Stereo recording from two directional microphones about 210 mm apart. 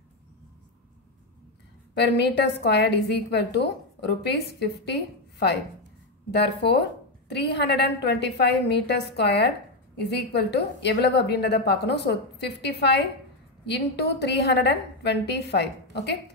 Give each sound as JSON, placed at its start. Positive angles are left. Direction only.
{"t": 2.0, "sound": "a woman's voice", "side_deg": 55}